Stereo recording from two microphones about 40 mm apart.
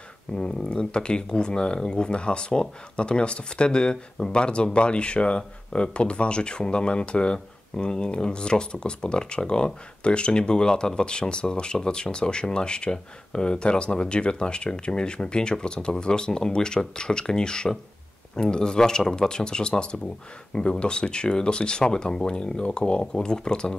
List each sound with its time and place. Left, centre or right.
0.3 s speech: left